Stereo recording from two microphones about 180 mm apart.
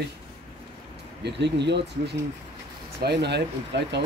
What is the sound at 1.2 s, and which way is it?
Speech, 75° right (ahead or behind).